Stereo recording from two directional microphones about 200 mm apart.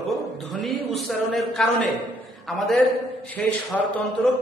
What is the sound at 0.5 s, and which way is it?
A man's voice, centre (ahead or behind).